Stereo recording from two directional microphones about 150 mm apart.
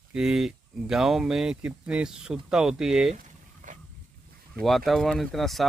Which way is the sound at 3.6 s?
60° right (ahead or behind).